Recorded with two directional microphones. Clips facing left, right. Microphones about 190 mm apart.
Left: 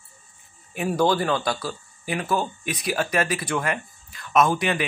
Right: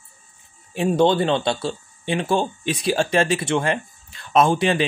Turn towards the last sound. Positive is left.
turn(degrees=-30)  # may be behind; listen again after turning